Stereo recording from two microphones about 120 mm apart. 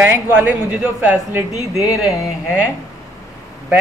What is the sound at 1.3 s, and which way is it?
Speech, 25° right (ahead or behind).